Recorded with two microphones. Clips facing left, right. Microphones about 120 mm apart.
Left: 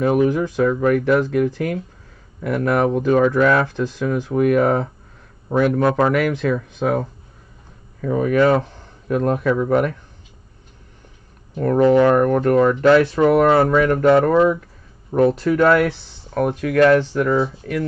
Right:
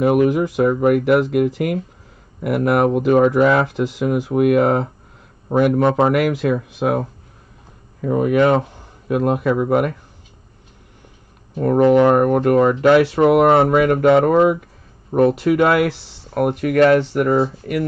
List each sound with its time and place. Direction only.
0.0 s speech: 15° right (ahead or behind)
5.8 s speech: 25° right (ahead or behind)
6.1 s speech: 10° right (ahead or behind)
8.1 s speech: 10° right (ahead or behind)
11.5 s speech: 15° right (ahead or behind)
13.5 s speech: 25° right (ahead or behind)